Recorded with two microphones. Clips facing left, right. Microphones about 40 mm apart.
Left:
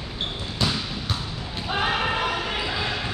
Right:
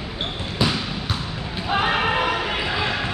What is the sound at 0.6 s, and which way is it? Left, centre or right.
Basketball bounce, centre.